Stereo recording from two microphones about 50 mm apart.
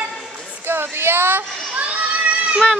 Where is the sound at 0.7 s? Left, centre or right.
Right.